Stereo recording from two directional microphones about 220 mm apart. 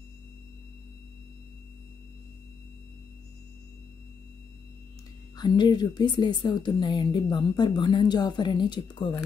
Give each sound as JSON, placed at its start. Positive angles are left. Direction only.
{"t": 5.4, "sound": "a woman's voice", "side_deg": 20}